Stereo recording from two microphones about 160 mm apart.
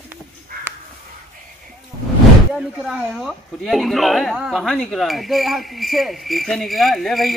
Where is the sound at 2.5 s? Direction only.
5° right (ahead or behind).